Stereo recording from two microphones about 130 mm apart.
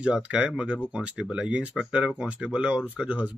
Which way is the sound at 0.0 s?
10° right (ahead or behind).